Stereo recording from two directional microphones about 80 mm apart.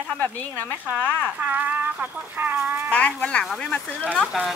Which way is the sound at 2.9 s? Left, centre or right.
Centre.